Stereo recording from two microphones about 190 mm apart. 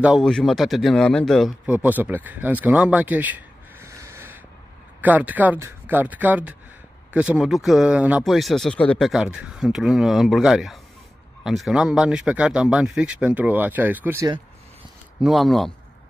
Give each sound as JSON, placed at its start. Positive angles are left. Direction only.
{"t": 0.0, "sound": "a man's voice", "side_deg": 0}
{"t": 15.2, "sound": "speech", "side_deg": 0}